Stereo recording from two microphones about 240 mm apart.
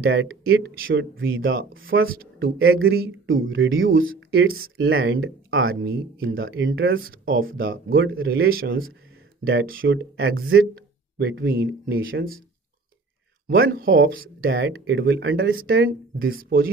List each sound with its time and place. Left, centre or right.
0.0 s speech: right
5.9 s speech: right
8.2 s speech: right
13.5 s speech: right
13.8 s speech: right